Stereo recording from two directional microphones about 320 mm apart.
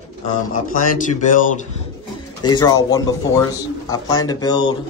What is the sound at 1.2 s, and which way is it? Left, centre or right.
Speech, left.